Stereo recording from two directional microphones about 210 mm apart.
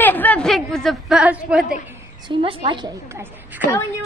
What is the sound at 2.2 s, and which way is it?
Speech, 25° right (ahead or behind).